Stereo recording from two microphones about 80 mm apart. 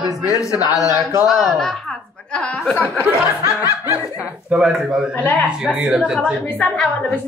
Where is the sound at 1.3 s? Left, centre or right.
Centre.